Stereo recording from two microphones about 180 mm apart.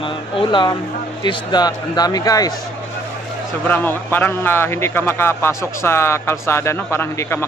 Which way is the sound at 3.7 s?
10° left (ahead or behind).